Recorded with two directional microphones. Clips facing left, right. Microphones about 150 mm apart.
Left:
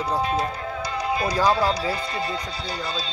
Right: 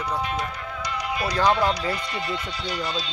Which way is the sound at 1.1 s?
30° left (ahead or behind).